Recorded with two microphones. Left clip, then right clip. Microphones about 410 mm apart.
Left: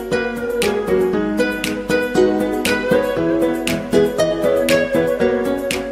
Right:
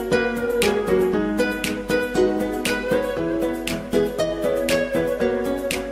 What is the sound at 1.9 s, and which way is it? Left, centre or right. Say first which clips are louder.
Music: left 5 dB; left.